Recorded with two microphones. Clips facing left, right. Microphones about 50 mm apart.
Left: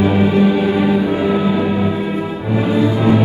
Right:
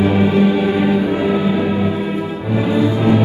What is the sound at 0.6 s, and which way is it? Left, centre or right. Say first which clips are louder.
Music: left 1 dB; right.